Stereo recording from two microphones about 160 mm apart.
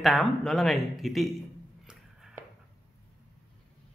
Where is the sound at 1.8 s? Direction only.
5° right (ahead or behind).